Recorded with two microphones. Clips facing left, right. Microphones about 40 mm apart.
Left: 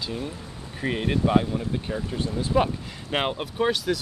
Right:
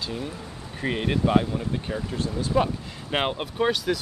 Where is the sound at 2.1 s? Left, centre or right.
Centre.